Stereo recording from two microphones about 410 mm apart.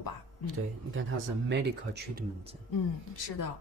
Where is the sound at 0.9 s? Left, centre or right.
Right.